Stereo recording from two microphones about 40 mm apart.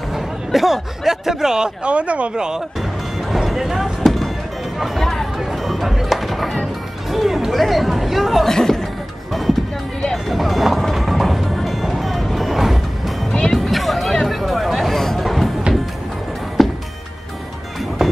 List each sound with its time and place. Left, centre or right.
0.1 s speech: centre
1.9 s speech: right
2.3 s speech: centre
2.8 s music: centre
4.7 s speech: centre
5.0 s music: centre
7.1 s speech: centre
8.5 s speech: centre
10.1 s music: centre
16.6 s music: centre
18.0 s music: centre